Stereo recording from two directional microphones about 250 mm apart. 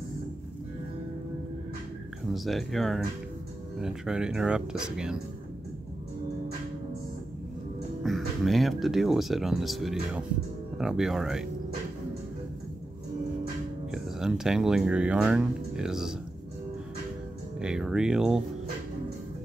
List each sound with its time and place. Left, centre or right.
2.3 s speech: centre
8.0 s speech: centre
13.9 s speech: centre
17.6 s speech: centre